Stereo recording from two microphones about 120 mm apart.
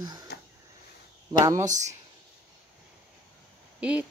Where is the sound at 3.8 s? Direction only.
10° right (ahead or behind).